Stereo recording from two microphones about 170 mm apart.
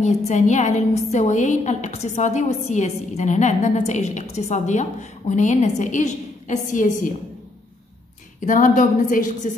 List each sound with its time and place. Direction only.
0.0 s a woman's voice: 45° left (ahead or behind)
8.4 s a woman's voice: 50° left (ahead or behind)